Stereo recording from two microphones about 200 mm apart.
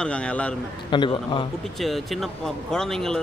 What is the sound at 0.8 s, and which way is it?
Speech, 25° left (ahead or behind).